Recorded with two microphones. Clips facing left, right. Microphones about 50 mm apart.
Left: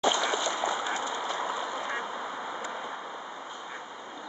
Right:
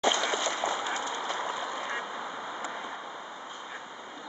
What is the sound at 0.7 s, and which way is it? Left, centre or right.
Vehicle, centre.